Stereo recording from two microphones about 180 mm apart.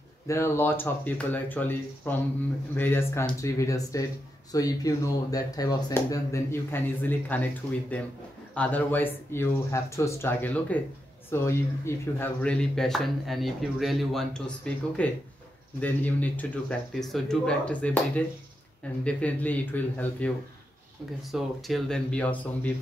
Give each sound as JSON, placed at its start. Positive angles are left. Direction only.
{"t": 0.3, "sound": "speech", "side_deg": 15}